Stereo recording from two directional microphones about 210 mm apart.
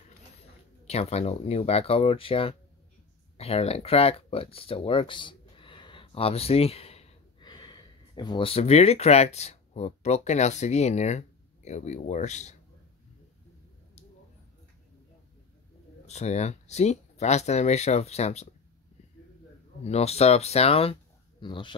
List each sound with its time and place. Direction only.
0.8 s speech: 30° left (ahead or behind)
16.1 s speech: 30° left (ahead or behind)
19.8 s speech: 30° left (ahead or behind)